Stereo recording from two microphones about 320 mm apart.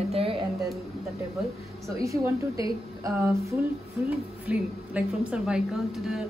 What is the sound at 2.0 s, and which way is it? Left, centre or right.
A woman's voice, centre.